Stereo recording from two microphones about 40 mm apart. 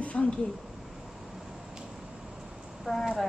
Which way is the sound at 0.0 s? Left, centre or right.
Left.